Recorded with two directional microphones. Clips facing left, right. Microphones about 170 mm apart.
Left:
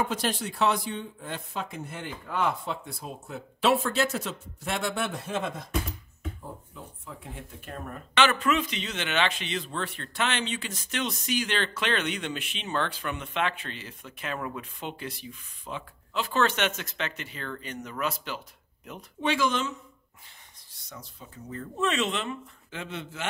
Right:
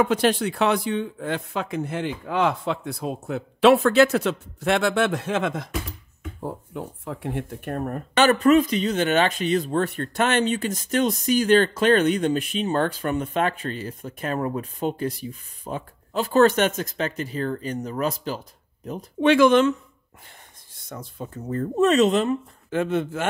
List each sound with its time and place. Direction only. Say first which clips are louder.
0.0 s speech: right 9 dB; 65° right (ahead or behind); by 5.7 s 90° right
6.4 s speech: right 11 dB; 70° right (ahead or behind); by 18.4 s 35° right (ahead or behind)
19.2 s speech: right 11 dB; 60° right (ahead or behind)
20.9 s speech: right 10 dB; 55° right (ahead or behind)